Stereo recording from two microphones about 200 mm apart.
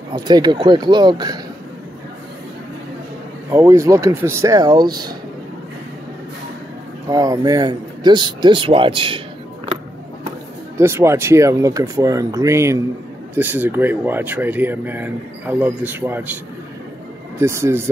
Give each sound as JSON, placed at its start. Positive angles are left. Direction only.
{"t": 0.1, "sound": "speech", "side_deg": -20}
{"t": 3.4, "sound": "speech", "side_deg": -15}
{"t": 7.1, "sound": "speech", "side_deg": -20}
{"t": 10.8, "sound": "speech", "side_deg": -15}
{"t": 17.4, "sound": "speech", "side_deg": -15}